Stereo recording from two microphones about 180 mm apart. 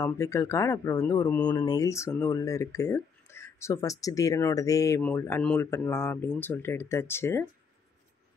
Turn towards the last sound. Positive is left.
turn(degrees=15)  # may be behind; listen again after turning